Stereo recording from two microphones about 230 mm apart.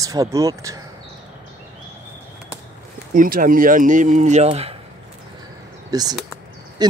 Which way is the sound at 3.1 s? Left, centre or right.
Right.